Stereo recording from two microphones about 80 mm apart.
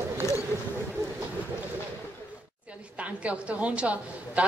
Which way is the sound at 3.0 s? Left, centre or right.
Centre.